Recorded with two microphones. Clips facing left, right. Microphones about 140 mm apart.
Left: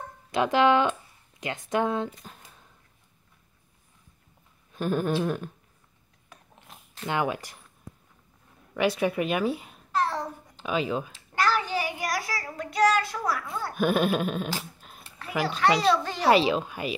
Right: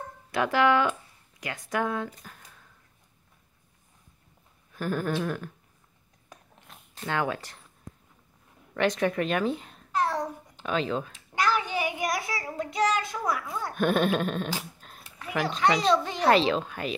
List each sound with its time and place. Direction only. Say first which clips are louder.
0.3 s a sound: left 2 dB; 20° left (ahead or behind)
1.4 s speech: left 3 dB; 25° left (ahead or behind)
4.7 s a sound: left 3 dB; 20° left (ahead or behind)
7.1 s speech: left 1 dB; 15° left (ahead or behind)
8.7 s speech: even; 10° left (ahead or behind)
11.3 s child singing: left 1 dB; 20° right (ahead or behind)
13.4 s speech: left 1 dB; centre (ahead or behind)
14.8 s a sound: even; 5° left (ahead or behind)
15.0 s a sound: right 1 dB; 10° right (ahead or behind)
15.7 s speech: left 1 dB; 5° left (ahead or behind)
16.0 s a child's voice: right 1 dB; 20° right (ahead or behind)
16.3 s speech: left 1 dB; 10° left (ahead or behind)